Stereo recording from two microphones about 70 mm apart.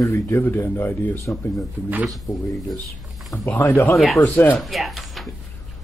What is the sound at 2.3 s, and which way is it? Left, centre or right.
Speech, centre.